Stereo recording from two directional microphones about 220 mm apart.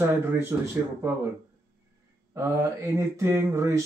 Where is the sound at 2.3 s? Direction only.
10° right (ahead or behind).